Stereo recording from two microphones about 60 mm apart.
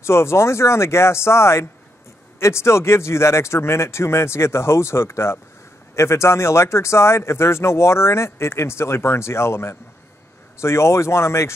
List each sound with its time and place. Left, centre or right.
0.0 s speech: left